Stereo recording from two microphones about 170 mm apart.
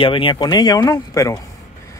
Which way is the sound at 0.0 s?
30° left (ahead or behind).